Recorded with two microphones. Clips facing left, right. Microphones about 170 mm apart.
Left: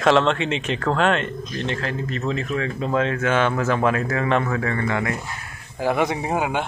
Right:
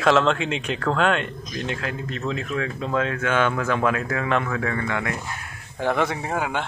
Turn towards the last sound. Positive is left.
turn(degrees=15)  # may be behind; listen again after turning